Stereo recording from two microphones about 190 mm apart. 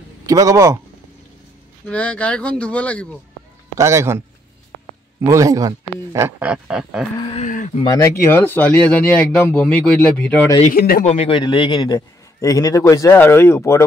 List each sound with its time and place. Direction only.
0.3 s speech: 15° right (ahead or behind)
1.9 s a man's voice: 5° left (ahead or behind)
3.7 s speech: 15° right (ahead or behind)
5.2 s speech: 15° right (ahead or behind)
7.2 s speech: 30° left (ahead or behind)
7.4 s speech: 45° left (ahead or behind)
7.8 s a man's voice: 15° left (ahead or behind)
10.7 s speech: 50° left (ahead or behind)
11.1 s a man's voice: 30° left (ahead or behind); by 13.8 s 15° left (ahead or behind)